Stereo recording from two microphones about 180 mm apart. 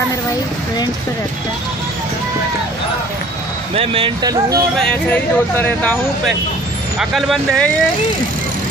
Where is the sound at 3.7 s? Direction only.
30° right (ahead or behind).